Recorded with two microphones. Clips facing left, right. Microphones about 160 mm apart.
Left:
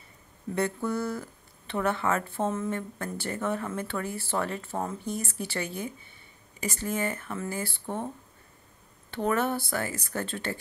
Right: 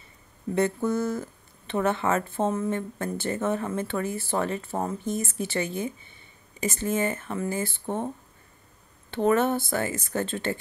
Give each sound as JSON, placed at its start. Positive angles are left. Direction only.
{"t": 0.6, "sound": "speech", "side_deg": -20}
{"t": 9.1, "sound": "speech", "side_deg": -25}